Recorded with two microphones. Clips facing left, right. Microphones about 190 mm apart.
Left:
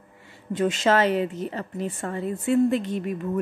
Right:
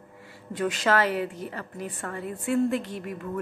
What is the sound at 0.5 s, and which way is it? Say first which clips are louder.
A woman's voice: left 4 dB; 25° left (ahead or behind).